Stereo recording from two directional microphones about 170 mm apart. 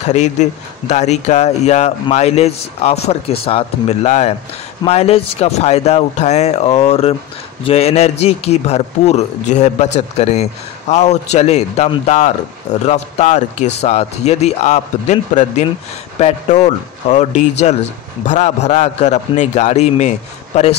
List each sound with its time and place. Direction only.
0.0 s a man's voice: 45° left (ahead or behind)